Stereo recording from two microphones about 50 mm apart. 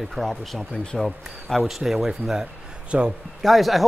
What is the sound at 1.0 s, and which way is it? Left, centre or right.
Speech, centre.